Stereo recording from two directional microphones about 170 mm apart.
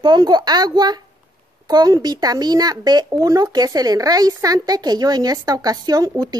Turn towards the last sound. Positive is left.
turn(degrees=-20)  # may be behind; listen again after turning